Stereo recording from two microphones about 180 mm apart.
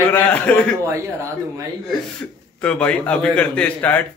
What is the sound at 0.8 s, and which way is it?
Speech, 15° right (ahead or behind).